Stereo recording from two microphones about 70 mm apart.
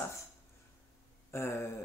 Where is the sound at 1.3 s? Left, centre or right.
Left.